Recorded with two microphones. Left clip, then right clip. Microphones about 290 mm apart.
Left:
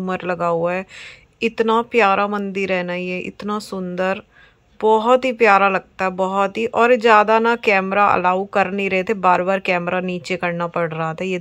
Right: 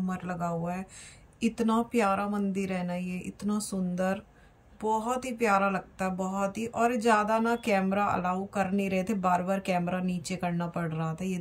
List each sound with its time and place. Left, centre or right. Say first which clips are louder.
0.0 s speech: left 13 dB; left